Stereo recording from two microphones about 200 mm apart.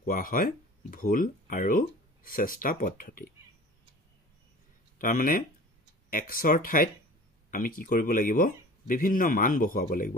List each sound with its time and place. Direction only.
0.0 s speech: 45° left (ahead or behind)
4.9 s speech: 45° left (ahead or behind)